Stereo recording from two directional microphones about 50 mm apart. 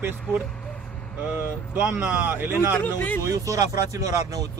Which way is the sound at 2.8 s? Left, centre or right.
Left.